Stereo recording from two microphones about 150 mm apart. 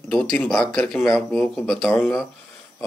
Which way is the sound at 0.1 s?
5° left (ahead or behind).